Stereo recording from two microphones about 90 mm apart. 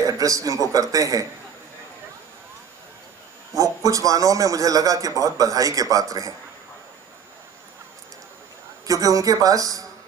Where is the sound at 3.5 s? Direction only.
40° right (ahead or behind).